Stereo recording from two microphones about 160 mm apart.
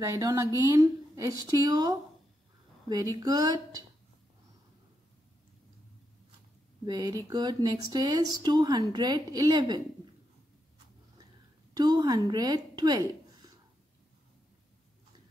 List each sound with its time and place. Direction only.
0.0 s speech: 20° right (ahead or behind)
3.2 s speech: 25° right (ahead or behind)
6.9 s speech: 25° right (ahead or behind)
11.7 s a woman's voice: 25° right (ahead or behind)